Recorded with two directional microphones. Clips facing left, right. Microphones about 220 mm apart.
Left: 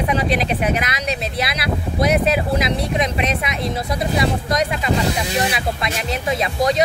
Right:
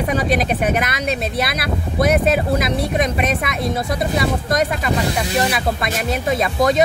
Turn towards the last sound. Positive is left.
turn(degrees=-50)  # may be behind; listen again after turning